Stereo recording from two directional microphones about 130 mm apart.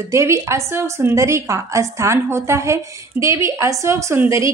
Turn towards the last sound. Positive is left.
turn(degrees=-20)  # may be behind; listen again after turning